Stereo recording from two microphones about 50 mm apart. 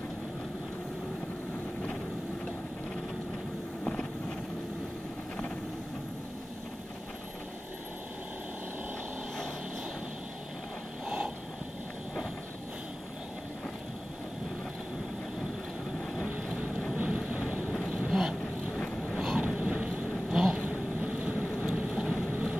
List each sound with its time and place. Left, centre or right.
11.1 s a sound: right
16.9 s vehicle: right
18.8 s vehicle: centre
19.1 s vehicle: centre
19.4 s vehicle: right
20.2 s a sound: centre
20.5 s vehicle: right